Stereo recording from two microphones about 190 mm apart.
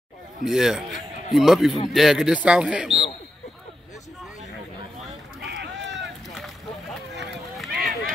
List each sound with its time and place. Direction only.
0.5 s speech: centre (ahead or behind)
5.4 s a sound: 65° right (ahead or behind)
7.5 s run: centre (ahead or behind)